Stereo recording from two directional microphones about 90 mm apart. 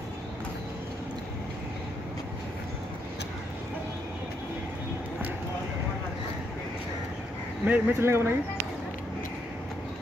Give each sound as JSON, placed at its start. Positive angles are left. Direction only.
{"t": 7.6, "sound": "speech", "side_deg": -25}